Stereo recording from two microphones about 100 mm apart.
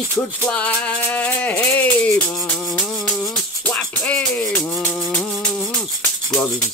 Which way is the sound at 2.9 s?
Centre (ahead or behind).